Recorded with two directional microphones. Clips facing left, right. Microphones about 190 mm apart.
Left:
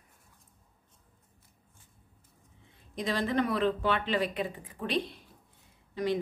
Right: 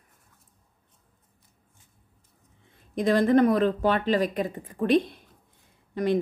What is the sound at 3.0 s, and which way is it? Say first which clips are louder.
A woman's voice: right 10 dB; 50° right (ahead or behind).